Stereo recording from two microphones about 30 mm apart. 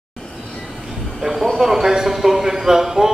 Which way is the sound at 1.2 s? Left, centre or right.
Centre.